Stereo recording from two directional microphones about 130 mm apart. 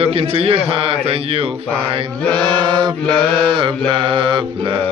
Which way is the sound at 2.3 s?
35° right (ahead or behind).